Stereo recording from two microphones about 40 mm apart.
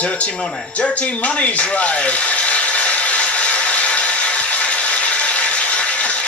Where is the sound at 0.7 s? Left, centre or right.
Left.